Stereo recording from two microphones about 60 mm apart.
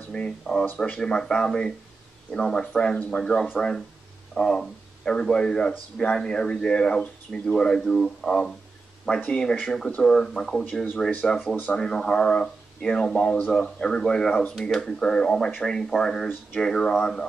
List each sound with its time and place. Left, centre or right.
0.1 s speech: centre